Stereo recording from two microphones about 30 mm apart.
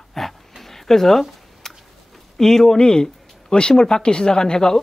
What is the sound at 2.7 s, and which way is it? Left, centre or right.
Speech, left.